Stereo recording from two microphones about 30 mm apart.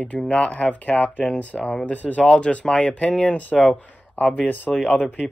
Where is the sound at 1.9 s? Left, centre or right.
Left.